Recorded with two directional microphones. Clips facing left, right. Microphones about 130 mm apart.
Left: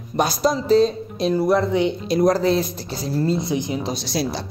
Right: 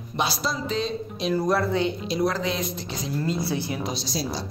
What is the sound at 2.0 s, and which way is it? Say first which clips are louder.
Speech: left 7 dB; 50° left (ahead or behind).